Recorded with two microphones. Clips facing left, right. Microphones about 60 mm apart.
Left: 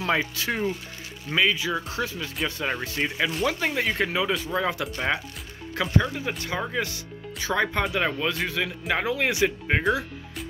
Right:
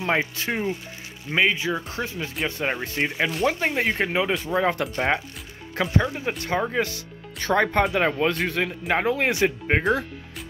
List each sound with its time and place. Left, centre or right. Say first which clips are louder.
0.0 s speech: right 1 dB; right
7.3 s speech: right 4 dB; right